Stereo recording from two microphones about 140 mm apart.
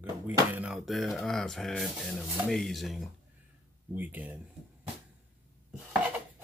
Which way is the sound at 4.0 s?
15° right (ahead or behind).